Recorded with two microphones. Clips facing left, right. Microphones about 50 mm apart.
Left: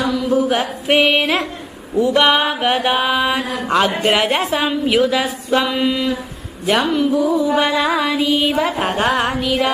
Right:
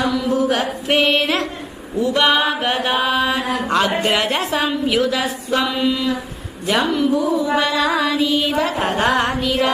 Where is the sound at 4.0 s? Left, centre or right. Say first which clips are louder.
Left 3 dB; centre.